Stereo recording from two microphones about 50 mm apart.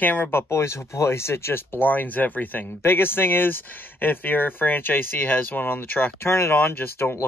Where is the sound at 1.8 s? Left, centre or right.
Left.